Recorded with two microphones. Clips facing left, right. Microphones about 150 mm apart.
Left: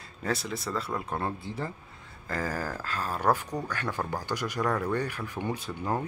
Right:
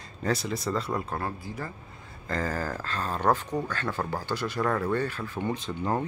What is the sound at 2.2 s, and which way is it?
Speech, 10° left (ahead or behind).